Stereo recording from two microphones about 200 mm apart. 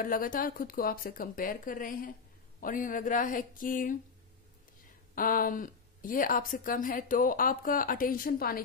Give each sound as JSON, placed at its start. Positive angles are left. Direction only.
{"t": 0.0, "sound": "a woman's voice", "side_deg": 45}
{"t": 5.1, "sound": "a woman's voice", "side_deg": 45}